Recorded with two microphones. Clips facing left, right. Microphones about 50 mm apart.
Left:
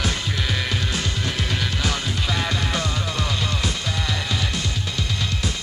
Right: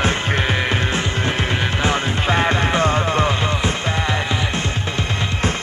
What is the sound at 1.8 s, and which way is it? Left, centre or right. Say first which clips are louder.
Music: right 6 dB; right.